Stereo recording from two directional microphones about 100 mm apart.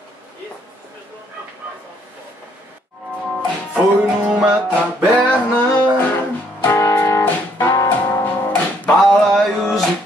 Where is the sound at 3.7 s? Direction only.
10° right (ahead or behind).